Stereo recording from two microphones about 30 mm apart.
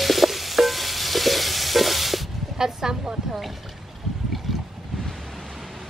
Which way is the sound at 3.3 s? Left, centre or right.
Centre.